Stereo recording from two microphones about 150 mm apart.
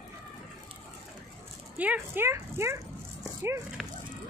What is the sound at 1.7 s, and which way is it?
Speech, 10° right (ahead or behind).